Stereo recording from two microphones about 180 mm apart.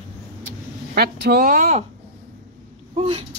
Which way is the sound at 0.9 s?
60° right (ahead or behind).